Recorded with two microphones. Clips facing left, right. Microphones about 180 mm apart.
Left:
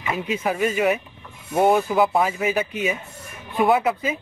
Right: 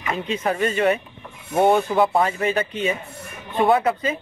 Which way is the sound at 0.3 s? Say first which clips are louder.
Even; 5° left (ahead or behind).